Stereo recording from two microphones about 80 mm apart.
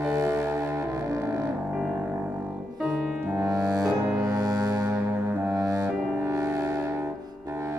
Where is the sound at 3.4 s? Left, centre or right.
Right.